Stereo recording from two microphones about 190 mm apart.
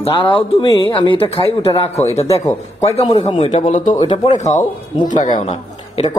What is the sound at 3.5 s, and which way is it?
Speech, 40° left (ahead or behind).